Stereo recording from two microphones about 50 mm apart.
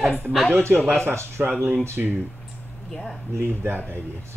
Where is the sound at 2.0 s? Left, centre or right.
Right.